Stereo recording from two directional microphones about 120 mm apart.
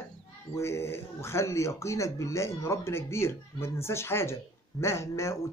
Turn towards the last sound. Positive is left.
turn(degrees=25)  # may be behind; listen again after turning